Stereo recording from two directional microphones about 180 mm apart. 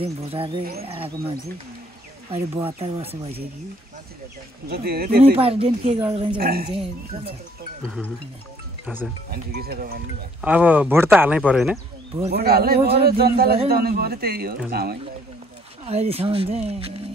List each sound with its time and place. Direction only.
0.0 s speech: 30° right (ahead or behind)
2.3 s speech: 30° right (ahead or behind)
4.6 s a man's voice: 60° right (ahead or behind)
5.2 s speech: 30° right (ahead or behind)
6.3 s a man's voice: 55° right (ahead or behind)
7.8 s speech: 5° left (ahead or behind)
9.3 s a man's voice: 60° right (ahead or behind)
10.4 s speech: 10° right (ahead or behind)
12.3 s a man's voice: 60° right (ahead or behind)
15.8 s speech: 35° right (ahead or behind)